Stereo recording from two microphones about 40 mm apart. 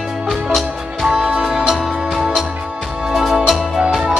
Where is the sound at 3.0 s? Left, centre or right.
Centre.